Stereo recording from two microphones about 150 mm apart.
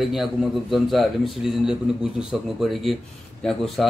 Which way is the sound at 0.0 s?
Centre (ahead or behind).